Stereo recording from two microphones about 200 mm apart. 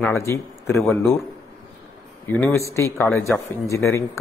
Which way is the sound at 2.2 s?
10° left (ahead or behind).